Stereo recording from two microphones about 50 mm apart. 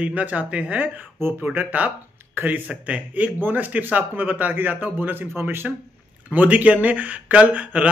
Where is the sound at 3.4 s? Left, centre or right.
Right.